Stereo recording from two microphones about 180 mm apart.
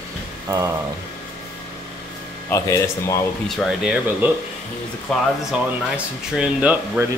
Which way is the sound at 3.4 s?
Centre (ahead or behind).